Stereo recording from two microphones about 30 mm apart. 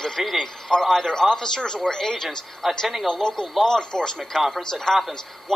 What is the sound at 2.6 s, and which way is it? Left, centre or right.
Speech, centre.